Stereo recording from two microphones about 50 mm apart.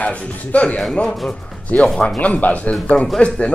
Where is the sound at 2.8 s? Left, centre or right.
Centre.